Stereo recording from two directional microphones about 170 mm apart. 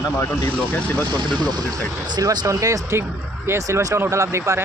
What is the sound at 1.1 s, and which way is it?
Speech, 25° right (ahead or behind).